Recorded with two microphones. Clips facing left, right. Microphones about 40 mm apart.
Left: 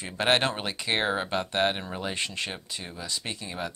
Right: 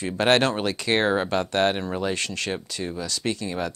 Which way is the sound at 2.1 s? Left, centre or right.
Left.